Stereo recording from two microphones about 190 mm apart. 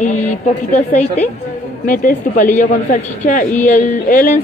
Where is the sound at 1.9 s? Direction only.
45° left (ahead or behind).